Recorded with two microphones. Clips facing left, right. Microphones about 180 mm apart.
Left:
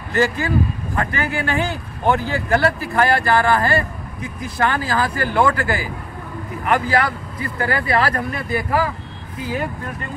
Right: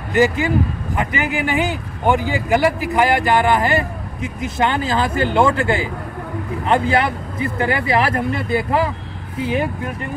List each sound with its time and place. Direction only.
0.1 s speech: 20° right (ahead or behind)